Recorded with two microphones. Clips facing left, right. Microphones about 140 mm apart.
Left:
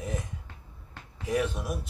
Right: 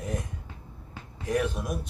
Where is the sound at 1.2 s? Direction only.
Centre (ahead or behind).